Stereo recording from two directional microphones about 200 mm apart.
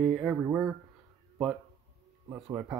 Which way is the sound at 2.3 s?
15° right (ahead or behind).